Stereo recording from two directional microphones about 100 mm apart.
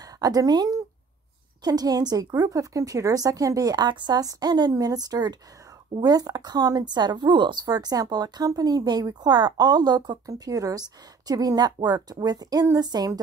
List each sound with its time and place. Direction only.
0.0 s a woman's voice: 40° right (ahead or behind)
7.6 s speech: 40° right (ahead or behind)